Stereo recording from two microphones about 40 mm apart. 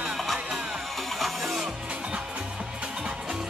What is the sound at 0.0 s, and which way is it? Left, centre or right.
Music, centre.